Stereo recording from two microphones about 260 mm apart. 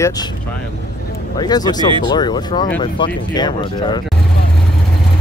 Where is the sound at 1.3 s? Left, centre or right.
Centre.